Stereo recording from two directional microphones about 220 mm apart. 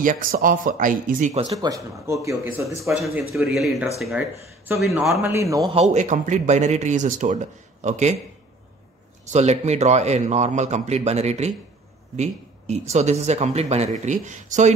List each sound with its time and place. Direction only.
0.0 s a man's voice: 40° right (ahead or behind)
1.4 s speech: 20° right (ahead or behind)
2.8 s speech: centre (ahead or behind)
5.2 s speech: 15° right (ahead or behind)
5.7 s a man's voice: 30° right (ahead or behind)
9.3 s a man's voice: 30° right (ahead or behind)